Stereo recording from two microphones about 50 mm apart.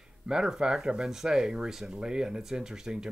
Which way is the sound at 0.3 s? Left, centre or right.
Centre.